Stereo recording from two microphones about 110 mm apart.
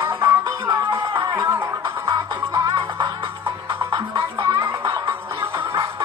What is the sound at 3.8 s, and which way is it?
Music, 30° right (ahead or behind).